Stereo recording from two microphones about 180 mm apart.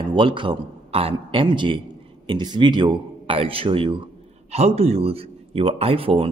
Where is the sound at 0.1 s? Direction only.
30° right (ahead or behind).